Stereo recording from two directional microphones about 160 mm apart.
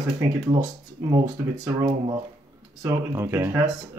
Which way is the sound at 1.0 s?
15° right (ahead or behind).